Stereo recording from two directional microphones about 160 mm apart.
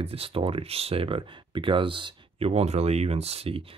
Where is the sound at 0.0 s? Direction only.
35° right (ahead or behind).